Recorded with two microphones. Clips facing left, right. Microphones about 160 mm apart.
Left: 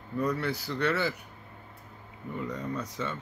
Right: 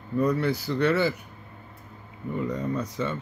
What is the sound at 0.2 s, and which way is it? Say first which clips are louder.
Speech: right 6 dB; 20° right (ahead or behind).